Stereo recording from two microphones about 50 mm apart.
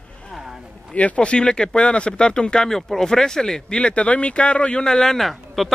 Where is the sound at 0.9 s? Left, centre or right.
Left.